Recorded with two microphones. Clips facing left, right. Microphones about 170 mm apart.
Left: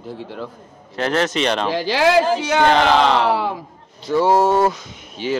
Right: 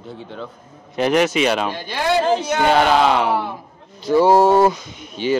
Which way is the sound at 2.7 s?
10° right (ahead or behind).